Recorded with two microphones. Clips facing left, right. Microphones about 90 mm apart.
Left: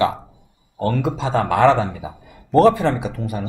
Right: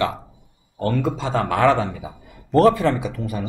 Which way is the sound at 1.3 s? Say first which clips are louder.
Left 3 dB; 25° left (ahead or behind).